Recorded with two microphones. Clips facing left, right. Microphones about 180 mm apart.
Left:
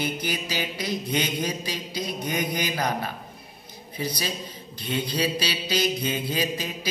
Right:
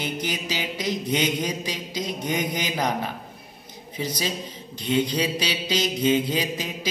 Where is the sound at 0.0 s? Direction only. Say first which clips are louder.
Even; 20° right (ahead or behind).